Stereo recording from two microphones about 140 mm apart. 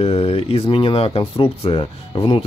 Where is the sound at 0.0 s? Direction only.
45° left (ahead or behind).